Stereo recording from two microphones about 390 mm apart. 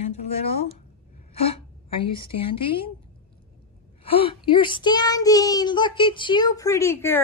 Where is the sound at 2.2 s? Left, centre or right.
Centre.